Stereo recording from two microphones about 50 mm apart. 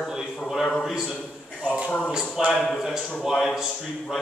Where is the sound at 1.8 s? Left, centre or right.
Left.